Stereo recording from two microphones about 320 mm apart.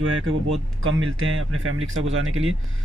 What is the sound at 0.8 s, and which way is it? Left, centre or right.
Speech, right.